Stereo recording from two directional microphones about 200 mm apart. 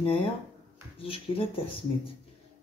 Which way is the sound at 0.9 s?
25° left (ahead or behind).